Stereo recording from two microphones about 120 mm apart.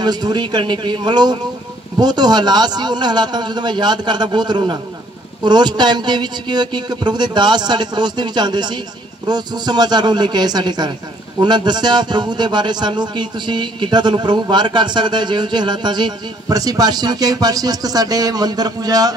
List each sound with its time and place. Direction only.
0.0 s a man's voice: 35° right (ahead or behind)